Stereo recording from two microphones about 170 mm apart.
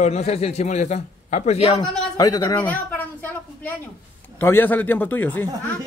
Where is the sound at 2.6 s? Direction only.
10° left (ahead or behind).